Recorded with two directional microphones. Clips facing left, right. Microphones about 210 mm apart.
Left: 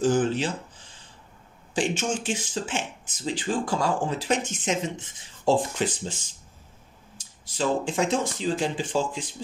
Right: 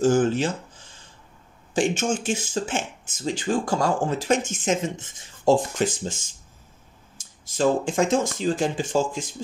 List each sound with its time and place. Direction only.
0.0 s speech: 45° right (ahead or behind)
1.7 s speech: 45° right (ahead or behind)